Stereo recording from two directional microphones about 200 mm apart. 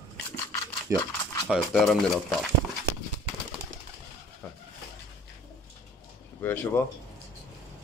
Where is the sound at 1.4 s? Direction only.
Centre (ahead or behind).